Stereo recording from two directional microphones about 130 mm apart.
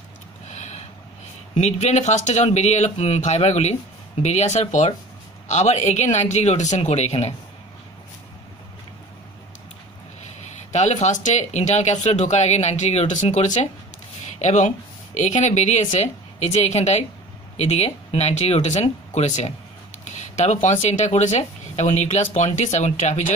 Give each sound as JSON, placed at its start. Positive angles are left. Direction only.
{"t": 0.5, "sound": "a sound", "side_deg": 65}
{"t": 1.5, "sound": "speech", "side_deg": 60}
{"t": 10.4, "sound": "speech", "side_deg": 65}